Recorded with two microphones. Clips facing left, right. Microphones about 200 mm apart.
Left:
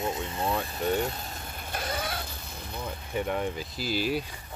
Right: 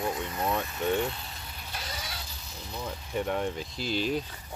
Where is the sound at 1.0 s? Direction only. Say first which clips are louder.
Left 1 dB; 45° left (ahead or behind).